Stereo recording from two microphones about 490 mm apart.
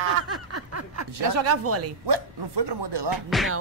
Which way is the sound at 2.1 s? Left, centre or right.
Right.